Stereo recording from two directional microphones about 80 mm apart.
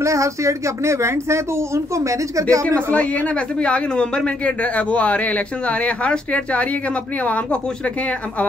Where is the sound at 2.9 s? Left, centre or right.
Centre.